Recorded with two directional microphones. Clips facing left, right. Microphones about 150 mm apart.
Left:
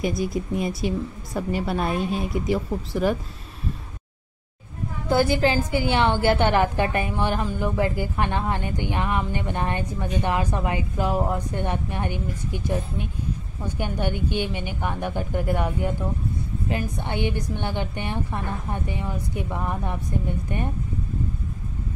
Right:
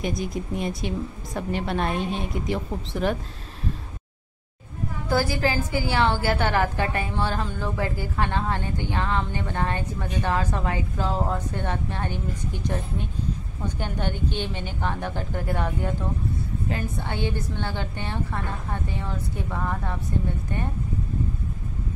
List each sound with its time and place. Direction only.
0.2 s a woman's voice: 5° left (ahead or behind)
5.1 s a woman's voice: 20° left (ahead or behind)